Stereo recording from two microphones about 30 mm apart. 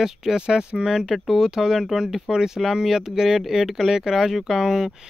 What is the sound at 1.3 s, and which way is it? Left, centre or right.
Speech, centre.